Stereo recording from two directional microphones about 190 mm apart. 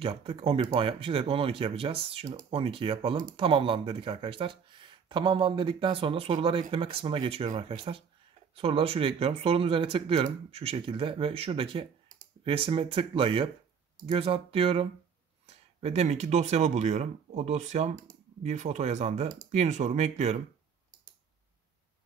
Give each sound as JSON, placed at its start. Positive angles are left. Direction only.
{"t": 0.0, "sound": "speech", "side_deg": -30}